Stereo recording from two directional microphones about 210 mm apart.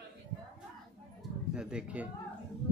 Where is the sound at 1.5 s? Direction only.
5° right (ahead or behind).